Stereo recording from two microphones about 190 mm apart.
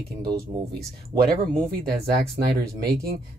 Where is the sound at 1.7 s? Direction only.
55° right (ahead or behind).